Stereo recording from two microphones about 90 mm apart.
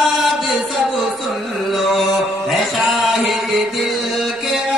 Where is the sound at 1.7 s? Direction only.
Centre (ahead or behind).